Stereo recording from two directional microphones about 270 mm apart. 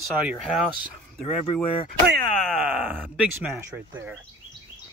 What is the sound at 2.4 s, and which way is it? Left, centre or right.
Speech, centre.